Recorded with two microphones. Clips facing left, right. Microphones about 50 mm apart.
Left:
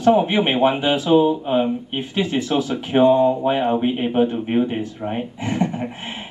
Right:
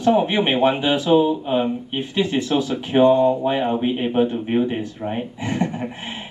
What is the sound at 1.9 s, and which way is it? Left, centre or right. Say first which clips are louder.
Speech: right 3 dB; left.